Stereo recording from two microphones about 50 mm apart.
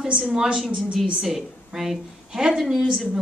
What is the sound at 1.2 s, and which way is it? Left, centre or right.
A woman's voice, centre.